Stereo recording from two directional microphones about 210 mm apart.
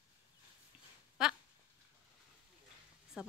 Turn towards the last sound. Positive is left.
turn(degrees=-5)  # may be behind; listen again after turning